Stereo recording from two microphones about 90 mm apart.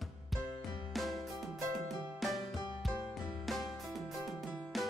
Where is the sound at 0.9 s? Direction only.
Centre (ahead or behind).